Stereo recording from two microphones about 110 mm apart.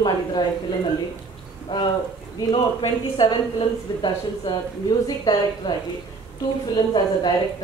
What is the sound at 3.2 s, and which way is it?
A woman's voice, 45° left (ahead or behind).